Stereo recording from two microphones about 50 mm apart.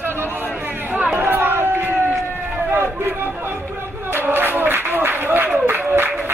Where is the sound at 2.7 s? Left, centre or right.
Right.